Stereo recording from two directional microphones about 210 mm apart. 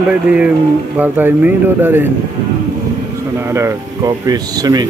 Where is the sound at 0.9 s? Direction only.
10° right (ahead or behind).